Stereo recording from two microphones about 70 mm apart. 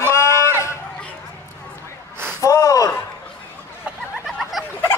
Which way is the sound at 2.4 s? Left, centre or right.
Left.